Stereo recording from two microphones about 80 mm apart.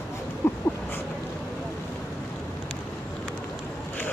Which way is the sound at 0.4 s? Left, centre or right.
Left.